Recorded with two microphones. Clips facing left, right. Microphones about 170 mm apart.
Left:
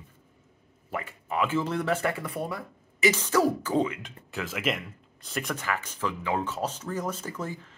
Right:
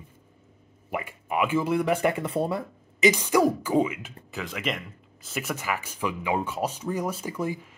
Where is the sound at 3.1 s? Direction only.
15° right (ahead or behind).